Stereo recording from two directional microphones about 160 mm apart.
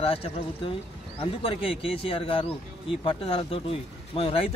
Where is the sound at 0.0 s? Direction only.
35° left (ahead or behind).